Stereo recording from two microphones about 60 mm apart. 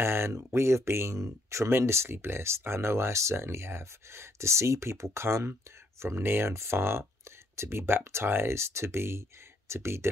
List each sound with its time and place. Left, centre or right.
0.0 s speech: right